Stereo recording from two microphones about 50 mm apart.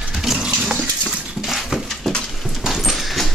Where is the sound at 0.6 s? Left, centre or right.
Centre.